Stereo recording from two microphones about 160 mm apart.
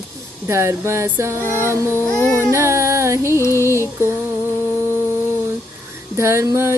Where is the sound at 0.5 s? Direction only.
15° right (ahead or behind).